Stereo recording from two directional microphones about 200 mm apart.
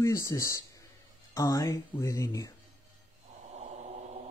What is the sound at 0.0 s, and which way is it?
Speech, 15° left (ahead or behind).